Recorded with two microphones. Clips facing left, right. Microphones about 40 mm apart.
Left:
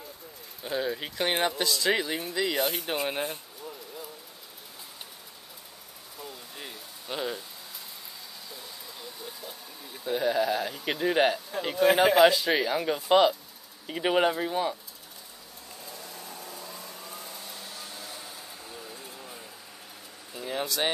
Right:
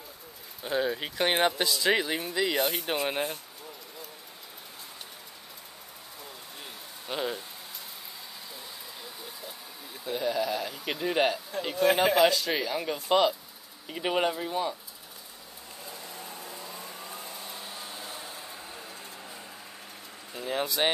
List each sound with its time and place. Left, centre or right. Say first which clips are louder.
0.6 s speech: right 2 dB; centre
7.1 s speech: right 1 dB; centre
9.0 s speech: left 3 dB; centre
16.0 s vehicle: right 1 dB; right
18.3 s a sound: right 1 dB; right
18.8 s a sound: even; centre
20.3 s vehicle: right 1 dB; centre